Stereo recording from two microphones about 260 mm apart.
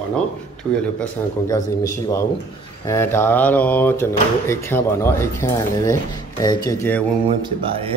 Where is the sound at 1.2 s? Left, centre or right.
Centre.